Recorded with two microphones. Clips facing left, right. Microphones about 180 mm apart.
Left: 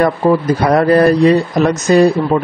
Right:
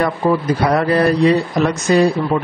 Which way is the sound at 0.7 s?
45° left (ahead or behind).